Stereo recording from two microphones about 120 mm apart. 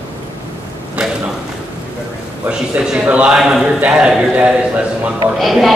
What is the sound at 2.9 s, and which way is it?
A man's voice, 10° right (ahead or behind).